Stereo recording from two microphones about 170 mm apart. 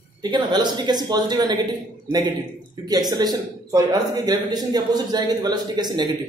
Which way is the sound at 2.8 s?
20° right (ahead or behind).